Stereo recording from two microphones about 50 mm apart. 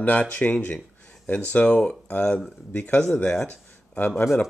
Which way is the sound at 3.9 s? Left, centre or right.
Left.